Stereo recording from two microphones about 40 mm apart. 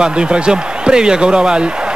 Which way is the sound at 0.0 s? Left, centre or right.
Right.